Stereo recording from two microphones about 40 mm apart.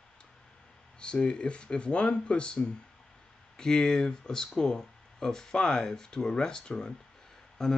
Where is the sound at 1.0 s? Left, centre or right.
Left.